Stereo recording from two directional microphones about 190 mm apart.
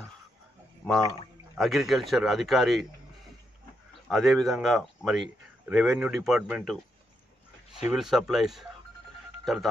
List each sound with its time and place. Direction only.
1.6 s a man's voice: centre (ahead or behind)
4.1 s a man's voice: centre (ahead or behind)
7.9 s a man's voice: centre (ahead or behind)